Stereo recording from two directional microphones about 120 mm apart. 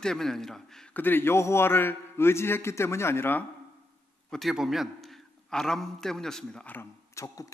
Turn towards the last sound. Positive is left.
turn(degrees=25)  # may be behind; listen again after turning